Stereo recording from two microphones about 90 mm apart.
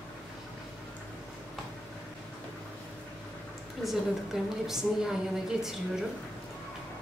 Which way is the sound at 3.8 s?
5° right (ahead or behind).